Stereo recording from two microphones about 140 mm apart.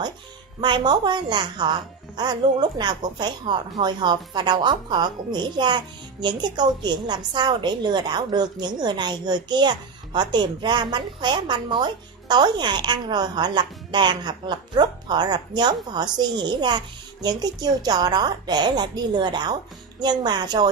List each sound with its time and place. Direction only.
0.6 s a woman's voice: 30° right (ahead or behind)